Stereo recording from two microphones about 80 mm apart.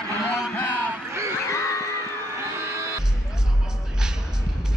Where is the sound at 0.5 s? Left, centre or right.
Left.